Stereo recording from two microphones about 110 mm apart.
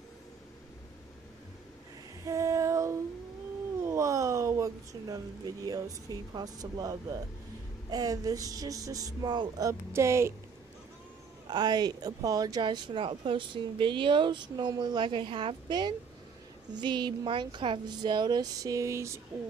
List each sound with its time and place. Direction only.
2.2 s female singing: 30° right (ahead or behind)
3.8 s speech: 25° right (ahead or behind)
11.4 s speech: 40° right (ahead or behind)